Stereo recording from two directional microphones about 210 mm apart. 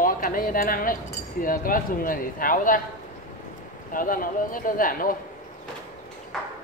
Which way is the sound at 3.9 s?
40° left (ahead or behind).